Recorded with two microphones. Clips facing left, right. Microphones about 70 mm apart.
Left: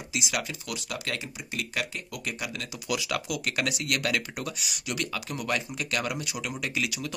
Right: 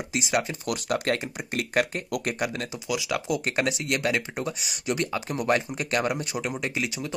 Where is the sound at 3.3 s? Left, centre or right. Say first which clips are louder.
Right 4 dB; right.